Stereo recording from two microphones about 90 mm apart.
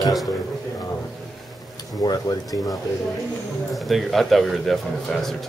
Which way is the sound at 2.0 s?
45° left (ahead or behind).